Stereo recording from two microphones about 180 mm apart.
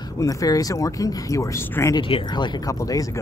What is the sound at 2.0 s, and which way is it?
Speech, 25° left (ahead or behind).